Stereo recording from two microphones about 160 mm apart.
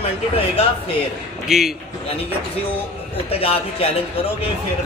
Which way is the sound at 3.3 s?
35° left (ahead or behind).